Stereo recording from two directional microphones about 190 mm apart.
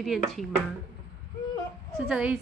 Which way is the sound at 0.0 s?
Centre (ahead or behind).